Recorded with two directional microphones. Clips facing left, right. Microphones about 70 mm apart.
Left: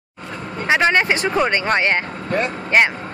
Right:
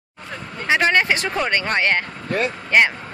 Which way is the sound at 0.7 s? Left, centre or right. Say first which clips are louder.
Left 1 dB; centre.